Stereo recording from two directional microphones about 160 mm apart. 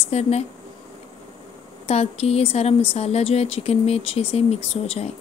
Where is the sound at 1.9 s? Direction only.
40° left (ahead or behind).